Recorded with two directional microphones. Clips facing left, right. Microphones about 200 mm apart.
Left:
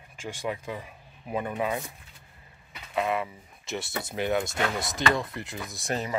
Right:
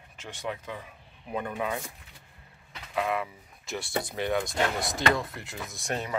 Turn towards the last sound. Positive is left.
turn(degrees=5)  # may be behind; listen again after turning